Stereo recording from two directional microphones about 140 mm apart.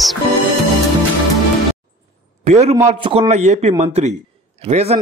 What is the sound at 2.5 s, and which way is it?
A man's voice, 50° right (ahead or behind).